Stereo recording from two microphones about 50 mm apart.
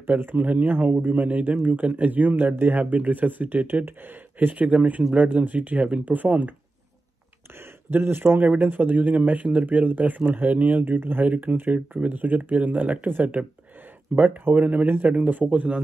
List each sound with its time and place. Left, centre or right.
0.1 s speech: right
7.5 s speech: right
11.2 s speech: right